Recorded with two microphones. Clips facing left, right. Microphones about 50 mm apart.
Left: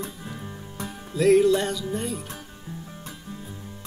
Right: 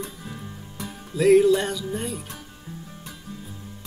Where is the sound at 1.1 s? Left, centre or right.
Centre.